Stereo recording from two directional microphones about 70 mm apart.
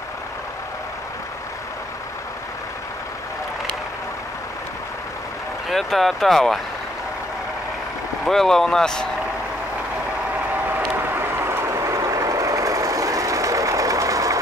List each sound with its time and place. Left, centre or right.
5.7 s speech: centre
8.3 s speech: centre
11.1 s vehicle: right